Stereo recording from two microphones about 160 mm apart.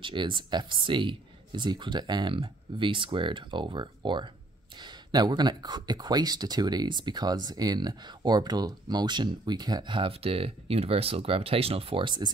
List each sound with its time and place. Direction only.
0.0 s speech: 30° right (ahead or behind)